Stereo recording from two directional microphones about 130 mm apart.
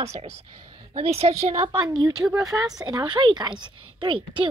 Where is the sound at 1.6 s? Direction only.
35° right (ahead or behind).